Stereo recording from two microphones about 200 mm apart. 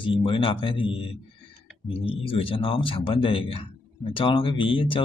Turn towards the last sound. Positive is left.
turn(degrees=25)  # may be behind; listen again after turning